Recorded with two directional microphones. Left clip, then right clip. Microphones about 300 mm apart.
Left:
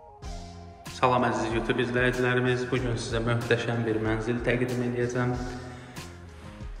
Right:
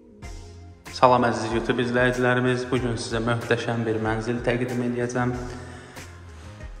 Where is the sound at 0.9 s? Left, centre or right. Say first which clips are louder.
Right 6 dB; centre.